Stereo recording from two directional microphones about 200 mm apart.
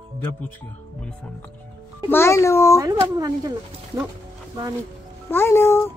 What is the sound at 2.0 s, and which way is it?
Speech, 10° left (ahead or behind).